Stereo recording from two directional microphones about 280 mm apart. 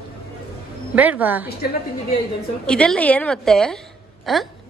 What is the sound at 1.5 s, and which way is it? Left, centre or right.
Speech, left.